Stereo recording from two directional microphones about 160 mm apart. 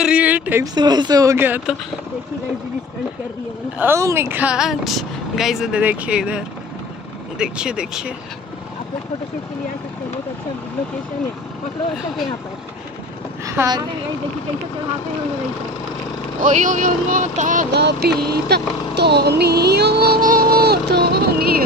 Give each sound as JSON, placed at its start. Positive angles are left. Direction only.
{"t": 0.0, "sound": "a sound", "side_deg": -10}
{"t": 0.7, "sound": "speech", "side_deg": -25}
{"t": 3.7, "sound": "speech", "side_deg": -15}
{"t": 13.5, "sound": "a woman's voice", "side_deg": -20}
{"t": 16.3, "sound": "speech", "side_deg": -50}
{"t": 17.7, "sound": "speech", "side_deg": -90}